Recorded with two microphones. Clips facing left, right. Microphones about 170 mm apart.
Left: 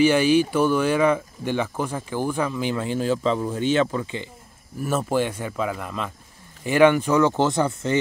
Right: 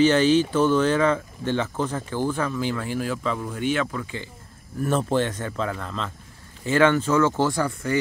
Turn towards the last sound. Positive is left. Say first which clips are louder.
# left 2 dB
turn(degrees=20)  # may be behind; listen again after turning